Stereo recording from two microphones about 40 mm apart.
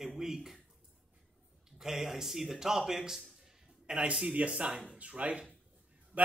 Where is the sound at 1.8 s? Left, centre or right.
Centre.